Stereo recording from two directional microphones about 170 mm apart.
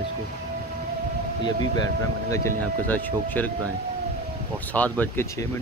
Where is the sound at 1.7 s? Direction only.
25° left (ahead or behind).